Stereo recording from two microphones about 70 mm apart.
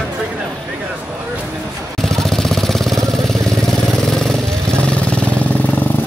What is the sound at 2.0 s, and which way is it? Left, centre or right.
Vehicle, centre.